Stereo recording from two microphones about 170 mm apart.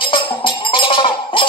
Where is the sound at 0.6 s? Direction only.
30° left (ahead or behind).